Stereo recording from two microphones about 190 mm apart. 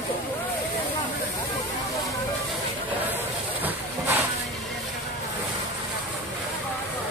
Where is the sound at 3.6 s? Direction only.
10° right (ahead or behind).